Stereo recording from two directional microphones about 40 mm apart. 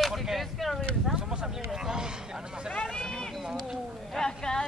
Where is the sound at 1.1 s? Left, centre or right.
Centre.